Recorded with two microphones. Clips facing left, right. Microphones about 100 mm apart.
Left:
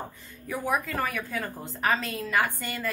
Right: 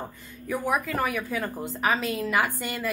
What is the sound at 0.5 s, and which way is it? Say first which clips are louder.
A woman's voice: right 2 dB; 5° right (ahead or behind).